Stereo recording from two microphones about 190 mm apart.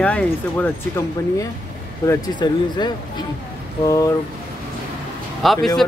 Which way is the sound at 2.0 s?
20° left (ahead or behind).